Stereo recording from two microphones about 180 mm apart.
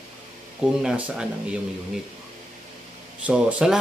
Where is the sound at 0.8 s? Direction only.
5° right (ahead or behind).